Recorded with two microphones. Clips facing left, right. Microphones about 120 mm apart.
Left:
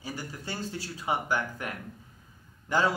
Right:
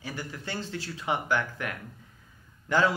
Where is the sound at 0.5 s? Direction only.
10° left (ahead or behind).